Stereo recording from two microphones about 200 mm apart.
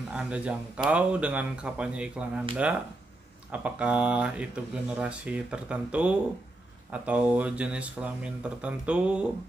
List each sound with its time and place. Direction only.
0.1 s speech: 5° right (ahead or behind)
3.5 s speech: 5° right (ahead or behind)